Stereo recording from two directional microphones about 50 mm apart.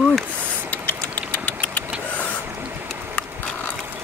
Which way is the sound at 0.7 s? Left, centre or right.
Left.